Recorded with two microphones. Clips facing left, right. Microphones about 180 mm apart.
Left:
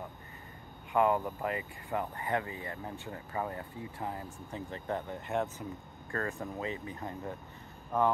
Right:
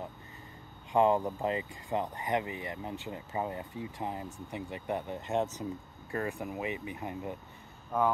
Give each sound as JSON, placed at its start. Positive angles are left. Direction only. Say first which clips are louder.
{"t": 0.9, "sound": "speech", "louder": "right 2 dB", "side_deg": -25}